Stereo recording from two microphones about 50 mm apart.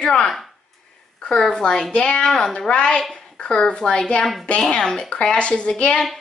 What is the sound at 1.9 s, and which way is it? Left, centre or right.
A woman's voice, left.